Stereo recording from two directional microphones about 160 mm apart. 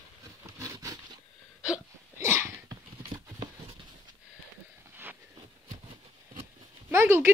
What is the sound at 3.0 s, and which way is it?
Clip-clop, 30° right (ahead or behind).